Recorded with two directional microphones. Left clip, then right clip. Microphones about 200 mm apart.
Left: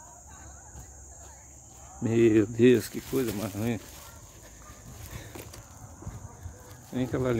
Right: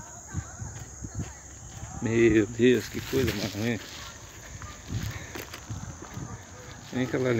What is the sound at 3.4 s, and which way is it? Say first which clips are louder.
Speech: right 2 dB; 25° left (ahead or behind).